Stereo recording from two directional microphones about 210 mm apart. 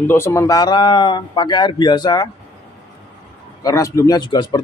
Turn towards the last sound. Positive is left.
turn(degrees=20)  # may be behind; listen again after turning